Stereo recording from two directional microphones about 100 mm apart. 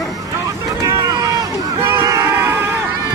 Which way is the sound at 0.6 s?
35° right (ahead or behind).